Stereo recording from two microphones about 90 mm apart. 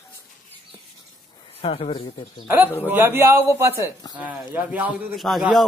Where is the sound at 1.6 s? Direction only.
90° left.